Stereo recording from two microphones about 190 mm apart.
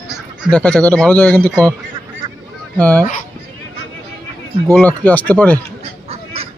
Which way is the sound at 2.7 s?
10° left (ahead or behind).